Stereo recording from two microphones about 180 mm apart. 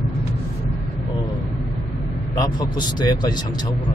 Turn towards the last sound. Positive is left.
turn(degrees=25)  # may be behind; listen again after turning